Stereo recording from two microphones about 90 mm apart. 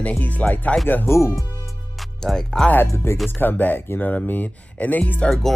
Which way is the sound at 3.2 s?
20° left (ahead or behind).